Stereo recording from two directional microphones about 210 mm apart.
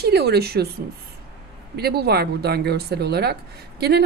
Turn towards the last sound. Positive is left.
turn(degrees=-50)  # may be behind; listen again after turning